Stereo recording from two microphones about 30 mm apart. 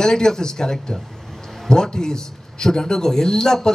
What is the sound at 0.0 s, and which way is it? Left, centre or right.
A man's voice, left.